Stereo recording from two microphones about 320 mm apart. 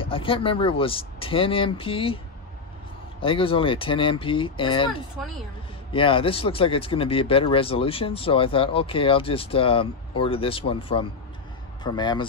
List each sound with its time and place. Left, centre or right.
0.0 s speech: centre
3.2 s speech: centre
5.9 s speech: centre